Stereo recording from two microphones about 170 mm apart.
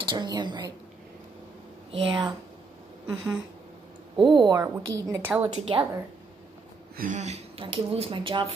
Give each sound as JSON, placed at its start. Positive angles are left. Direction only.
{"t": 0.0, "sound": "a woman's voice", "side_deg": -25}
{"t": 1.9, "sound": "speech", "side_deg": -35}
{"t": 4.2, "sound": "a woman's voice", "side_deg": -25}
{"t": 7.0, "sound": "speech", "side_deg": -45}